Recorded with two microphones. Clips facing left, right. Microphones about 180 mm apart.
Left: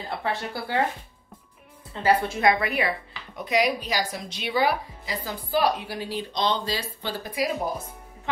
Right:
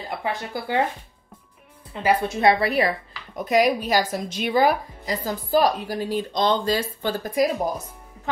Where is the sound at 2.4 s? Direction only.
35° right (ahead or behind).